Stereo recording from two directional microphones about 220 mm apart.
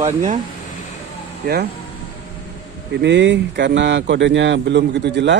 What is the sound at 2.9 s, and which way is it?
Speech, 50° right (ahead or behind).